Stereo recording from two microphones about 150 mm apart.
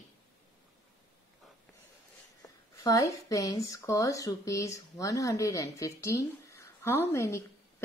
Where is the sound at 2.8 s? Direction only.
25° left (ahead or behind).